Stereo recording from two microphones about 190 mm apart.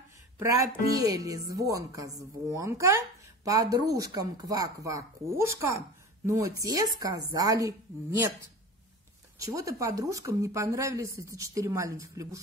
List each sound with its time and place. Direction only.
0.4 s speech: 20° right (ahead or behind)
9.4 s speech: 15° right (ahead or behind)